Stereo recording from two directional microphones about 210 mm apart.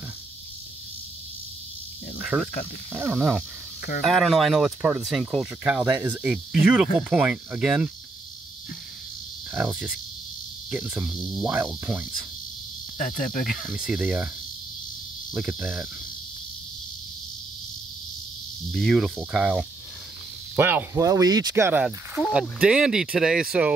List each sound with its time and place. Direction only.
2.2 s speech: 5° right (ahead or behind)
9.5 s cricket: 5° right (ahead or behind)
10.7 s speech: 5° right (ahead or behind)
12.9 s cricket: 40° left (ahead or behind)
13.7 s speech: centre (ahead or behind)
15.3 s speech: centre (ahead or behind)
18.7 s speech: centre (ahead or behind)